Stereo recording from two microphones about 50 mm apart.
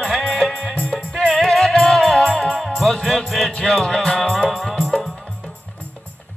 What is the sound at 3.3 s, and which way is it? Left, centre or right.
Speech, centre.